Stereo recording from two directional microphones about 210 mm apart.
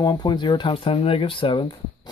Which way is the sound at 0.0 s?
20° left (ahead or behind).